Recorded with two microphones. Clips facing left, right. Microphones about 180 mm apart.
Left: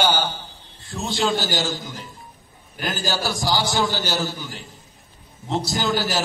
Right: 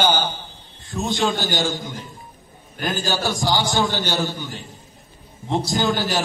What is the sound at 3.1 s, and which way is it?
A man's voice, 20° right (ahead or behind).